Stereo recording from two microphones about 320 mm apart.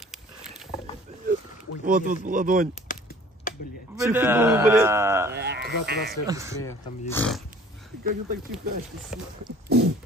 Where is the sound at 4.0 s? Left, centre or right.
Centre.